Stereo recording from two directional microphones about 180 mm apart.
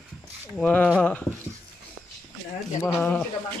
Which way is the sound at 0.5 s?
5° left (ahead or behind).